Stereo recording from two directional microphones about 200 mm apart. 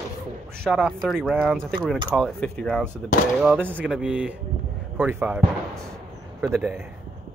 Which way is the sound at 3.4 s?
10° right (ahead or behind).